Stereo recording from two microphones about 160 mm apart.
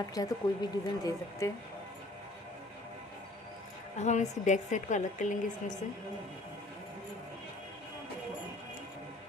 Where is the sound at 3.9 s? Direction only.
45° left (ahead or behind).